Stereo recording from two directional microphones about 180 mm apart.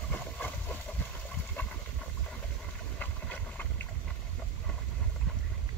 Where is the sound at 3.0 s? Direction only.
10° left (ahead or behind).